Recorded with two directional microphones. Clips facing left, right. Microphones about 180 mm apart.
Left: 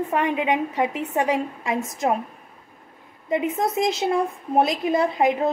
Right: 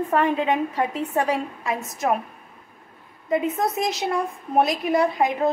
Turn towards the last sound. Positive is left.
turn(degrees=25)  # may be behind; listen again after turning